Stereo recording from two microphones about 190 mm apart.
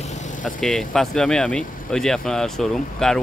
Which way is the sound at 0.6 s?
Centre (ahead or behind).